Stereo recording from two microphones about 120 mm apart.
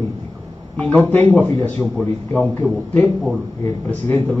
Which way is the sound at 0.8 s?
10° left (ahead or behind).